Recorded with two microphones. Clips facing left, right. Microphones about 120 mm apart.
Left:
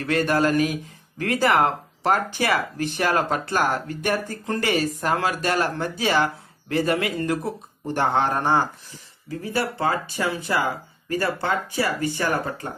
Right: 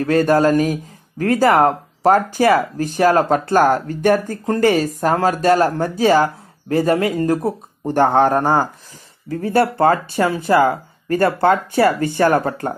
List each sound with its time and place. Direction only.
0.0 s speech: 40° right (ahead or behind)
9.3 s speech: 55° right (ahead or behind)